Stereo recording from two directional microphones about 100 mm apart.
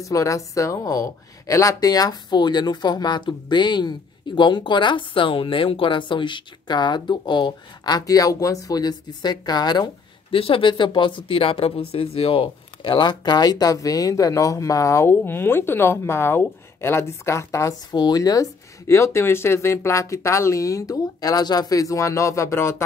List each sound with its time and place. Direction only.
0.0 s speech: 35° left (ahead or behind)
10.3 s speech: 65° left (ahead or behind); by 17.7 s 30° left (ahead or behind)
17.9 s speech: 40° left (ahead or behind)